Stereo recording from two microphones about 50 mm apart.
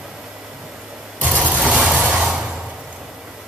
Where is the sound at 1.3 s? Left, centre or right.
Right.